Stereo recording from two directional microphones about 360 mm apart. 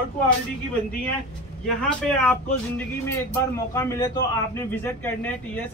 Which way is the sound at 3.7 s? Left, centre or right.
Centre.